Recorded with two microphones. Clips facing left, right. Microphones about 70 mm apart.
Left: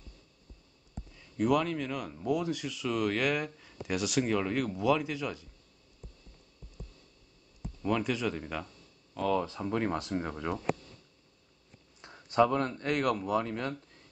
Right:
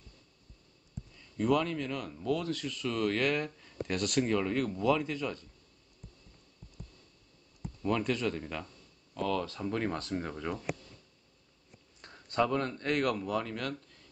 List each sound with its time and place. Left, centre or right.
1.1 s speech: centre
7.6 s speech: centre
12.0 s speech: centre